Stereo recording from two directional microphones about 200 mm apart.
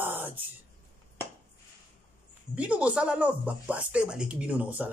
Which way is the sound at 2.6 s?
5° right (ahead or behind).